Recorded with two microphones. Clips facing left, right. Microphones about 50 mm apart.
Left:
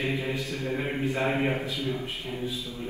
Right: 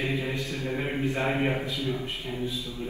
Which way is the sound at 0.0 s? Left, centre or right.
Left.